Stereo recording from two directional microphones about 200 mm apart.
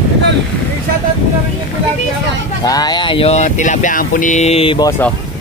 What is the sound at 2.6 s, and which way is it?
Speech, 20° left (ahead or behind).